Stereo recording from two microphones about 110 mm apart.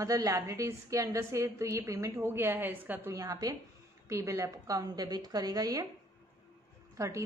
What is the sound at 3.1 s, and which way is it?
A woman's voice, 35° right (ahead or behind).